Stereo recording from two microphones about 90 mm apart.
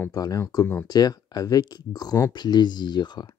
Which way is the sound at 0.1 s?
45° left (ahead or behind).